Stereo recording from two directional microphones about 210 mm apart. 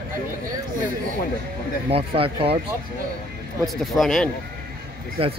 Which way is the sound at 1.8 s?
25° right (ahead or behind).